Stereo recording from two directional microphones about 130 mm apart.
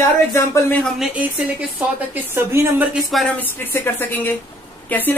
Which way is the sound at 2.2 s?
15° right (ahead or behind).